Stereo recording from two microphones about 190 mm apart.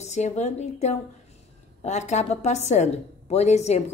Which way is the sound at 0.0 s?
35° left (ahead or behind).